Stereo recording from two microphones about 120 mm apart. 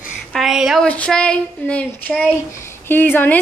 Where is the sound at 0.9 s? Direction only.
10° left (ahead or behind).